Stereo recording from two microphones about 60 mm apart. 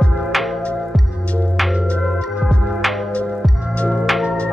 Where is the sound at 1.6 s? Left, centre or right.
Centre.